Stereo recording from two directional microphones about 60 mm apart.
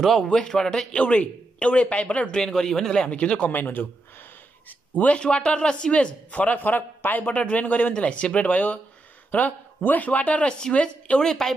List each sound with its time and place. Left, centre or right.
0.0 s a man's voice: centre
0.3 s a man's voice: centre
4.6 s a man's voice: left; by 11.5 s centre